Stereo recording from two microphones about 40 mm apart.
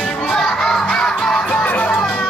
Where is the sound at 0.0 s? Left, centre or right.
Left.